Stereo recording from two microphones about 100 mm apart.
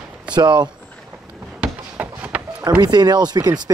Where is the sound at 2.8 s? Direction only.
45° right (ahead or behind).